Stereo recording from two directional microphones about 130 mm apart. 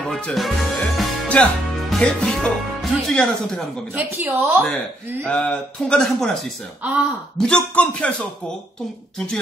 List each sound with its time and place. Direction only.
0.0 s music: centre (ahead or behind)
3.9 s a woman's voice: 15° right (ahead or behind)
5.2 s speech: 10° left (ahead or behind)
7.3 s speech: 5° left (ahead or behind)